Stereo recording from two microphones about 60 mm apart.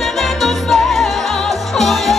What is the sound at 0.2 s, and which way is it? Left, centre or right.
Music, centre.